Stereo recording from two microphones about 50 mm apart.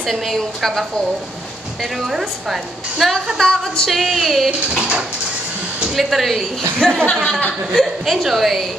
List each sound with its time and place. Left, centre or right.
0.0 s music: centre
1.8 s a woman's voice: centre
3.3 s music: centre
4.5 s speech: centre
5.9 s music: centre
6.8 s speech: centre
7.7 s music: centre